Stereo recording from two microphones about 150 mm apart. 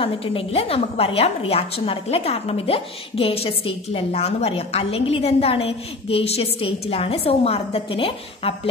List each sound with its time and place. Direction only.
0.0 s a woman's voice: 40° left (ahead or behind)